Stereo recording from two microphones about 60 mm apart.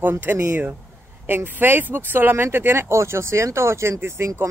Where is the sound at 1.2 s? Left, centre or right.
Right.